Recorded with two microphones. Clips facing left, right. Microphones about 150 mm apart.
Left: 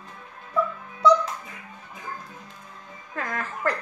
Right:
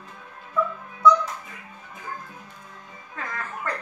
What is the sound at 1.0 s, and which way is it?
Music, 75° left (ahead or behind).